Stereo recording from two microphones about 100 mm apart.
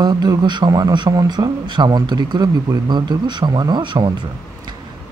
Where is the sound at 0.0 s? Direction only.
40° right (ahead or behind).